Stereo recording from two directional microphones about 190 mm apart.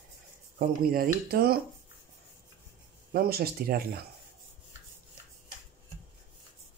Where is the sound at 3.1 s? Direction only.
55° right (ahead or behind).